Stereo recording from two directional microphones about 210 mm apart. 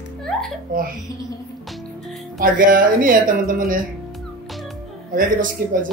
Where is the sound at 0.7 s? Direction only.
40° right (ahead or behind).